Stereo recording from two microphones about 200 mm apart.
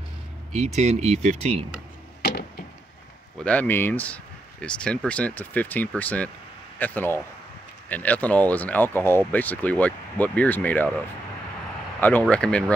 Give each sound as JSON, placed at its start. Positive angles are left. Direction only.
{"t": 0.5, "sound": "speech", "side_deg": -35}
{"t": 2.2, "sound": "a sound", "side_deg": 50}
{"t": 3.4, "sound": "speech", "side_deg": 10}
{"t": 12.0, "sound": "speech", "side_deg": 10}